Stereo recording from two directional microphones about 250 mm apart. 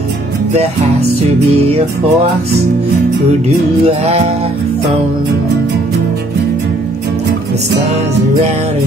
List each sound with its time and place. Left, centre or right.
3.4 s music: right